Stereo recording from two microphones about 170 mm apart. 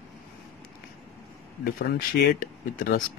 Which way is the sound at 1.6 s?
60° left (ahead or behind).